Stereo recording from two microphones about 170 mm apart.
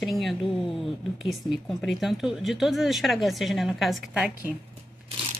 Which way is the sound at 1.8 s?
Centre (ahead or behind).